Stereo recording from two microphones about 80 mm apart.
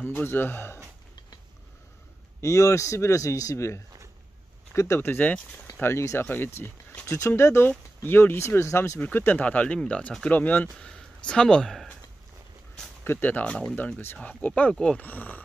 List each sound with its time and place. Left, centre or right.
0.0 s speech: left
2.4 s a man's voice: left; by 5.7 s centre
5.8 s a man's voice: left
9.0 s speech: left
10.9 s speech: centre
13.0 s speech: left; by 15.0 s centre
15.0 s speech: left